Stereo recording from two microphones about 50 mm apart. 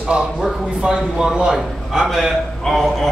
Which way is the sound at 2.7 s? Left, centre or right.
Centre.